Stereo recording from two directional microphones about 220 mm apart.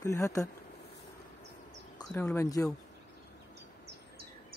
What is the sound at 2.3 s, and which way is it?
Speech, 15° left (ahead or behind).